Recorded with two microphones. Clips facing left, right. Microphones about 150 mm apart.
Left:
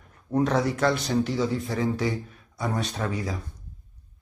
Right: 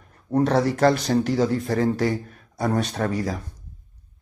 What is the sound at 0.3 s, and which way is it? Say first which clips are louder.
Speech: right 3 dB; 35° right (ahead or behind).